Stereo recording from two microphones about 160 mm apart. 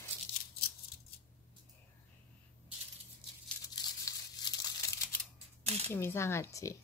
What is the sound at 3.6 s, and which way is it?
Tearing, 25° left (ahead or behind).